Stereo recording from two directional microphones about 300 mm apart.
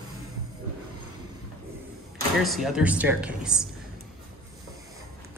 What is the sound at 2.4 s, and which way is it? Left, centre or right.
Speech, centre.